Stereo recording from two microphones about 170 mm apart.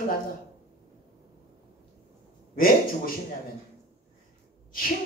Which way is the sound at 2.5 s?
55° left (ahead or behind).